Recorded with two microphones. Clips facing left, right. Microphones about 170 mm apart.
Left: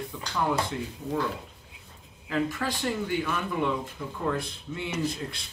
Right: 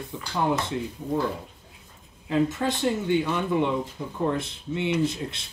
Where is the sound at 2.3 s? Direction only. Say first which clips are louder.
Right 5 dB; 25° right (ahead or behind).